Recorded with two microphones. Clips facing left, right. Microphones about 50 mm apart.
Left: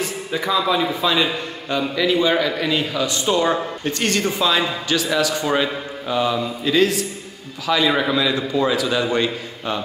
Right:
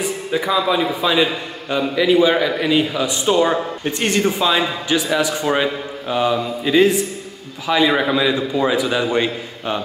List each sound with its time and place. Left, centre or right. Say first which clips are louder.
0.0 s a man's voice: right 3 dB; centre